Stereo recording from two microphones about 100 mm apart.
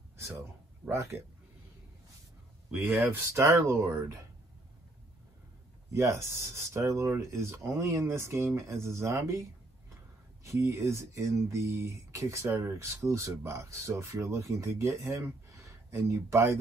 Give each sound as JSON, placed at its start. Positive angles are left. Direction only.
{"t": 0.8, "sound": "speech", "side_deg": -25}
{"t": 3.0, "sound": "speech", "side_deg": -25}
{"t": 5.9, "sound": "speech", "side_deg": -30}